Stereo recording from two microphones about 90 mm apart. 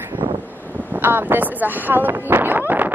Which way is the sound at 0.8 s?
20° right (ahead or behind).